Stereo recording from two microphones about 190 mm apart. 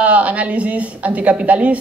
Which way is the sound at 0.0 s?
5° right (ahead or behind).